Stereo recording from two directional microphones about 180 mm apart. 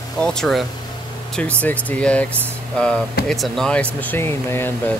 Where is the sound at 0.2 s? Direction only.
5° left (ahead or behind).